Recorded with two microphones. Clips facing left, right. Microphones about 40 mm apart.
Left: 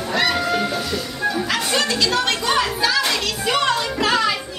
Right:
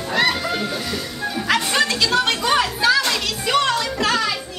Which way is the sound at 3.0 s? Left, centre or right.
Centre.